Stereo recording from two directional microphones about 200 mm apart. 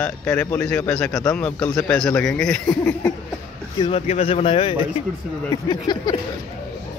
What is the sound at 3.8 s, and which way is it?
Speech, 30° left (ahead or behind).